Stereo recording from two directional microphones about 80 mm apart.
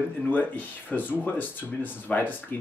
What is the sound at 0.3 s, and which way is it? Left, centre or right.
Speech, left.